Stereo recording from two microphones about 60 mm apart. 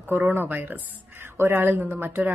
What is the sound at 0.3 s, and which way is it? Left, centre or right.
Speech, right.